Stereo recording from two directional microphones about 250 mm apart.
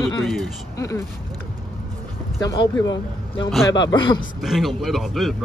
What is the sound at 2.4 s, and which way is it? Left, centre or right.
Speech, centre.